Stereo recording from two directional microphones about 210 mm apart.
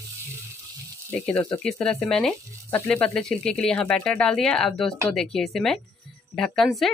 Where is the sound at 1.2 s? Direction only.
5° left (ahead or behind).